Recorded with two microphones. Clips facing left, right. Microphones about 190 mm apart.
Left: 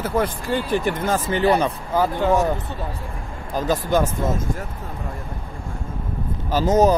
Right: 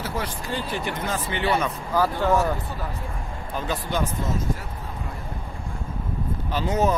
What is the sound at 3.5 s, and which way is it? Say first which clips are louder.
Speech: left 7 dB; 40° left (ahead or behind).